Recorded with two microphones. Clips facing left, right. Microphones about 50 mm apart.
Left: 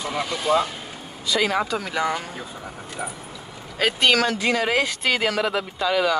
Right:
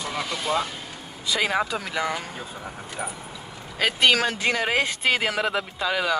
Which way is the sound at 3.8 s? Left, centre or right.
Centre.